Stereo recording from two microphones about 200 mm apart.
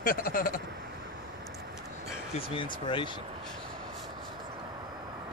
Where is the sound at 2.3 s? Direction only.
25° left (ahead or behind).